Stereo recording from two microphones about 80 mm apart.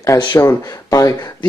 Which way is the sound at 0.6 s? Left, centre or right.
Left.